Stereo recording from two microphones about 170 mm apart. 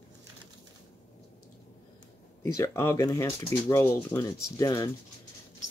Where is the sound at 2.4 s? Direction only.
15° left (ahead or behind).